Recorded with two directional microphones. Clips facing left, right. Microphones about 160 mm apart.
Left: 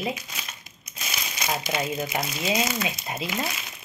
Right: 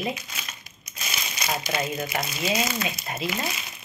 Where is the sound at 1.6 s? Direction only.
15° left (ahead or behind).